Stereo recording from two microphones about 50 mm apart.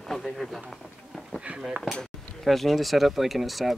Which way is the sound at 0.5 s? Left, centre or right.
Centre.